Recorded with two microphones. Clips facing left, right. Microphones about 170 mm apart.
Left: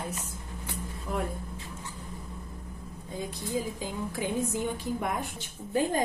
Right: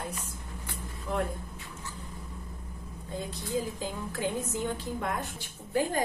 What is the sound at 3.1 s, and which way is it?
A woman's voice, 15° left (ahead or behind).